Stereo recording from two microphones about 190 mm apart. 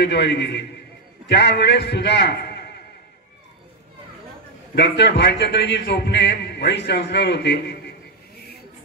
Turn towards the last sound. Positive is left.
turn(degrees=65)  # may be behind; listen again after turning